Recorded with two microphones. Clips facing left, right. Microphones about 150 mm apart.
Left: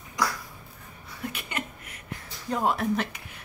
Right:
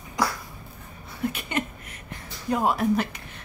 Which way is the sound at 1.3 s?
25° right (ahead or behind).